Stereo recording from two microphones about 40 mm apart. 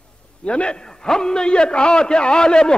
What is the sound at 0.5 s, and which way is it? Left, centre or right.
Speech, left.